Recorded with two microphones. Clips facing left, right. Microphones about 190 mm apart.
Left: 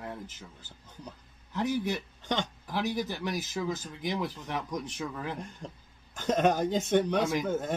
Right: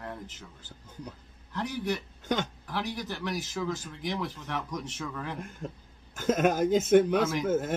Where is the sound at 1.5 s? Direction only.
20° left (ahead or behind).